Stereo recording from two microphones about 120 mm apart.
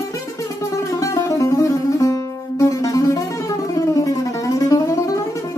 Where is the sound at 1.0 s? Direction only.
25° left (ahead or behind).